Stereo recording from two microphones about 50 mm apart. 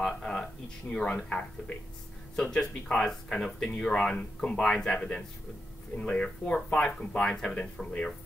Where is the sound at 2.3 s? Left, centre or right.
Centre.